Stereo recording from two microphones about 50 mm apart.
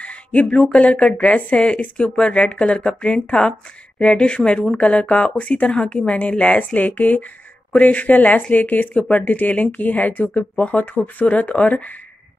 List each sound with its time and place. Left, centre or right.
0.0 s a sound: left
0.7 s speech: left
6.6 s speech: left